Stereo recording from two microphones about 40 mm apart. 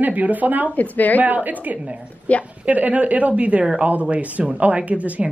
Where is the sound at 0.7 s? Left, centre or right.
Left.